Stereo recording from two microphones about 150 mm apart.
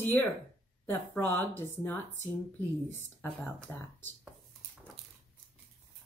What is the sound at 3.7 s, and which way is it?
Speech, 15° left (ahead or behind).